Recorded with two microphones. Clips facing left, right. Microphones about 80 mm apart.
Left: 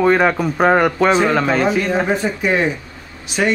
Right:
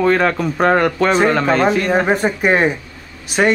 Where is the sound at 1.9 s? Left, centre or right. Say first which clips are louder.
Right 2 dB; right.